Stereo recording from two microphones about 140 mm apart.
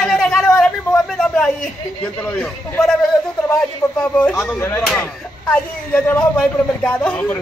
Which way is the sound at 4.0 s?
10° left (ahead or behind).